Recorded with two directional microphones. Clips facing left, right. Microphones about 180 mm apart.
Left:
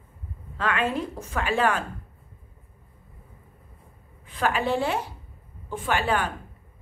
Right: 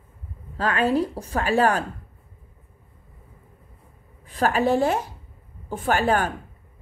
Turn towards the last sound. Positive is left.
turn(degrees=-45)  # may be behind; listen again after turning